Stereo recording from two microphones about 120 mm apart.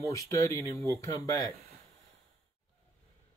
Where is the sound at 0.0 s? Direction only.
25° left (ahead or behind).